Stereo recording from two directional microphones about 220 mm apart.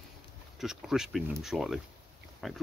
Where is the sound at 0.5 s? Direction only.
Centre (ahead or behind).